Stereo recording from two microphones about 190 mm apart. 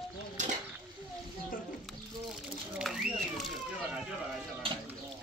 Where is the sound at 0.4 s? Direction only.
40° right (ahead or behind).